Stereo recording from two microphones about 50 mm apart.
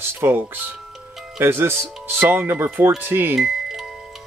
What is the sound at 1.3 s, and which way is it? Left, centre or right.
Speech, right.